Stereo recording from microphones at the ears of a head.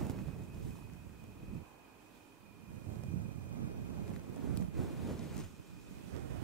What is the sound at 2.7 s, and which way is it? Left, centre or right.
Wind noise, right.